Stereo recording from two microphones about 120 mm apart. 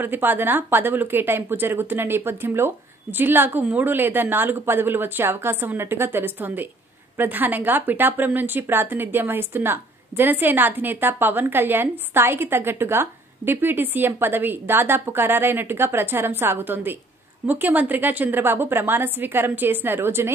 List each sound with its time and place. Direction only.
0.0 s a woman's voice: 15° right (ahead or behind)